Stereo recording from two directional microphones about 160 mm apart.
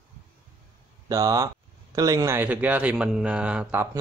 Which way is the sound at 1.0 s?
20° right (ahead or behind).